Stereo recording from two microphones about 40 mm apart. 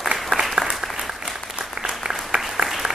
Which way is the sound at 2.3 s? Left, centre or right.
Right.